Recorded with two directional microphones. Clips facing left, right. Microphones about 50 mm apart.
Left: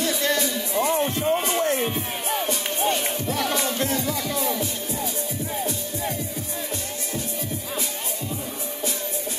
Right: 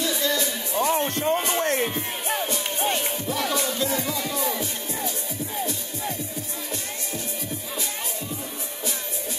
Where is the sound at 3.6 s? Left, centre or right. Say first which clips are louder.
Left 1 dB; left.